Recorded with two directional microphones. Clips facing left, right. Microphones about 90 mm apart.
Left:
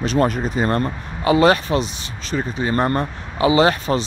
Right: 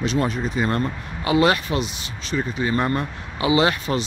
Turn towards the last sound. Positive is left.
turn(degrees=35)  # may be behind; listen again after turning